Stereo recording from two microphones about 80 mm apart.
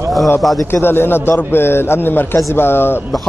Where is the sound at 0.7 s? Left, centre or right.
Left.